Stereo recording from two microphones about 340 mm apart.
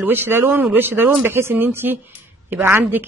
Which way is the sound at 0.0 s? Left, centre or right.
Centre.